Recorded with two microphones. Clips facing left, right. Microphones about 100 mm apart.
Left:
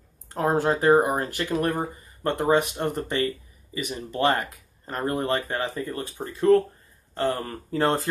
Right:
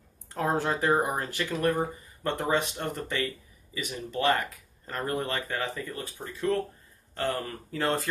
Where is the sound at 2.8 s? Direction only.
25° left (ahead or behind).